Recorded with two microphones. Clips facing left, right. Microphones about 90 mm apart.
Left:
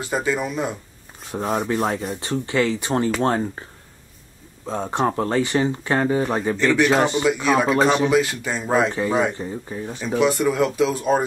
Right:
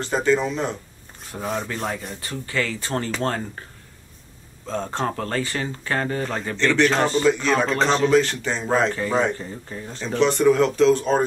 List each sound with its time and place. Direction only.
0.0 s speech: 10° left (ahead or behind)
4.6 s speech: 15° left (ahead or behind)